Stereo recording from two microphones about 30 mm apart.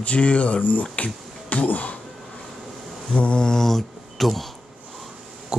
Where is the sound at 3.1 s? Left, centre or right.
Left.